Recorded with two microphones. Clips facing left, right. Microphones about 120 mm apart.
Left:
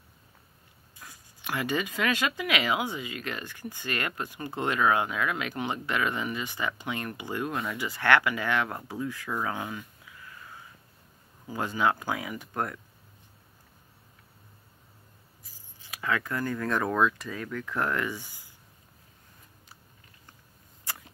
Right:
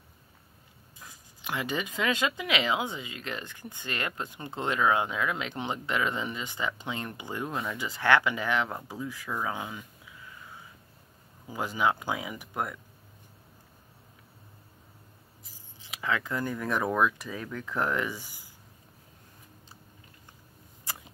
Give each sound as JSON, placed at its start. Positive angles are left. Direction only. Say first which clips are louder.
{"t": 0.9, "sound": "speech", "louder": "left 1 dB", "side_deg": -15}
{"t": 11.5, "sound": "speech", "louder": "left 1 dB", "side_deg": -15}
{"t": 15.5, "sound": "speech", "louder": "even", "side_deg": -15}
{"t": 20.8, "sound": "a sound", "louder": "even", "side_deg": -15}